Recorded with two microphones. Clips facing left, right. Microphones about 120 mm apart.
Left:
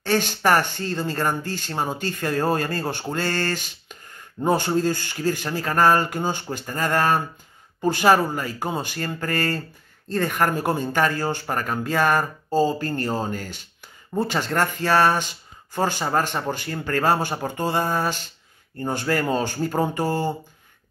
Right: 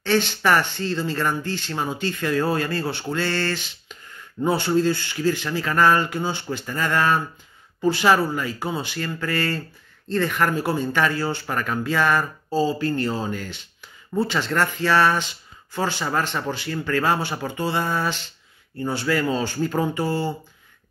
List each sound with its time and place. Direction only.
0.0 s speech: 45° left (ahead or behind)